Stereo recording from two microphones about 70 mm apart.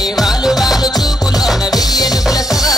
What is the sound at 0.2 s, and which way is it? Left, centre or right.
Music, centre.